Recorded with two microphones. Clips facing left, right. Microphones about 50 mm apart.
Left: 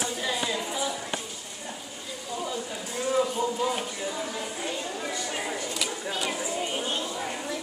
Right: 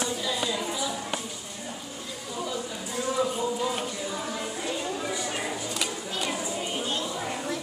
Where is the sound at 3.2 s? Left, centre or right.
Centre.